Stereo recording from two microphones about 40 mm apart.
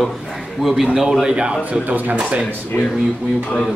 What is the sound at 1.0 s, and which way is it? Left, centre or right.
Speech, centre.